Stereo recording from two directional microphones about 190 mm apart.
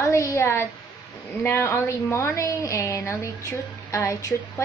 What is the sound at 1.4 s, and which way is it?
A woman's voice, 10° left (ahead or behind).